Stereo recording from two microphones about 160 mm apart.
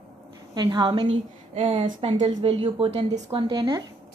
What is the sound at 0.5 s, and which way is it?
A woman's voice, 30° right (ahead or behind).